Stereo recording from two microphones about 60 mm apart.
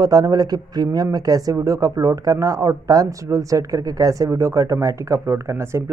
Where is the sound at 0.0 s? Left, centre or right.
Right.